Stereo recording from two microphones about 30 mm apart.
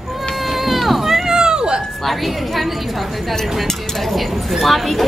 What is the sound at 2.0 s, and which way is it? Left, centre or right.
Speech, centre.